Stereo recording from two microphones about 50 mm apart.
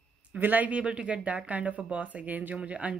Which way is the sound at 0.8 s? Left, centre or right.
Centre.